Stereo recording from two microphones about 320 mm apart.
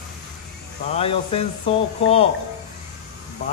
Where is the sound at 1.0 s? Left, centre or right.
Centre.